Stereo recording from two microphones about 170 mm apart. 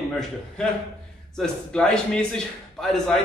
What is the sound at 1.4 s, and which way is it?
A man's voice, 5° left (ahead or behind).